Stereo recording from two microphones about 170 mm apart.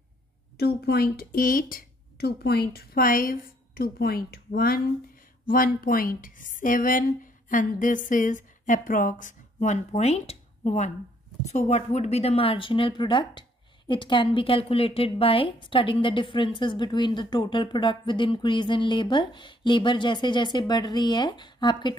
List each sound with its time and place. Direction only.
0.6 s a woman's voice: 70° left (ahead or behind); by 21.9 s 25° left (ahead or behind)